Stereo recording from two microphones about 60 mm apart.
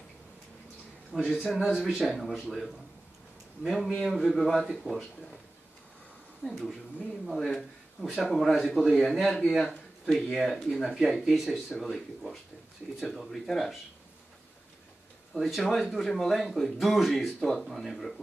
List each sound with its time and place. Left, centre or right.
1.4 s speech: centre
7.2 s speech: centre
15.3 s speech: centre